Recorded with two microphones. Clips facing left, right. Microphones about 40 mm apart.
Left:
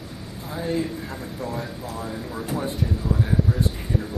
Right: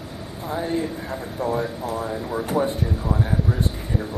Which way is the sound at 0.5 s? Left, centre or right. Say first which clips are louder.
Right 2 dB; right.